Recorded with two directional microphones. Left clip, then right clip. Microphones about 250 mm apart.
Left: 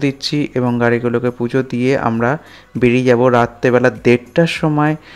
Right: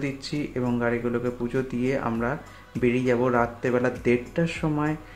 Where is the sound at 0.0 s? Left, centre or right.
Left.